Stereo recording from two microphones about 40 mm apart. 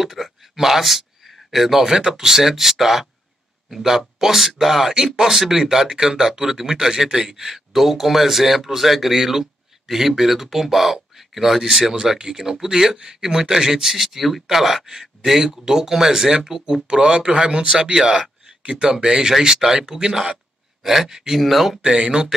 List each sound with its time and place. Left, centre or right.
0.0 s a sound: centre
2.0 s speech: centre
4.2 s speech: centre
20.8 s speech: centre
21.8 s speech: right